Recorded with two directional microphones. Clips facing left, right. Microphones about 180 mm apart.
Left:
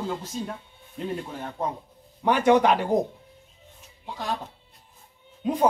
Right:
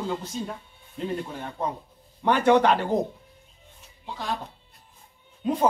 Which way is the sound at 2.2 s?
10° left (ahead or behind).